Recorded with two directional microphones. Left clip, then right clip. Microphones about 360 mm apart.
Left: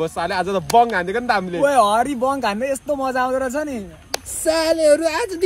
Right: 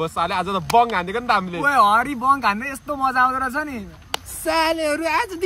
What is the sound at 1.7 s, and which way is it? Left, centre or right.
Speech, centre.